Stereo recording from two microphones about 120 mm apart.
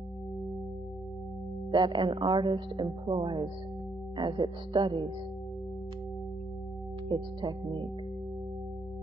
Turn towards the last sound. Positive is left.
turn(degrees=-40)  # may be behind; listen again after turning